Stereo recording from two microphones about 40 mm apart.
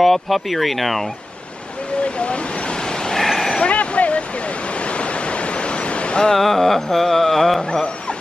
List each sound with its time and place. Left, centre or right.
0.0 s speech: centre
2.0 s waves: left; by 3.5 s centre
3.7 s waterfall: left
4.7 s a sound: left
6.3 s carnatic music: centre